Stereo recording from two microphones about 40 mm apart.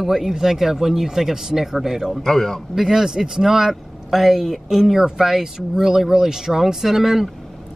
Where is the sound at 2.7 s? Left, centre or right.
Centre.